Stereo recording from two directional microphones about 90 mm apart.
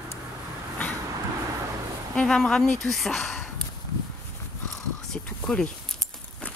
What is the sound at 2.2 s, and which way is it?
Speech, 10° left (ahead or behind).